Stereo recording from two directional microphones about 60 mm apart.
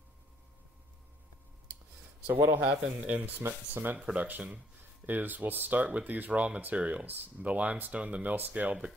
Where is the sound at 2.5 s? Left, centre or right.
Right.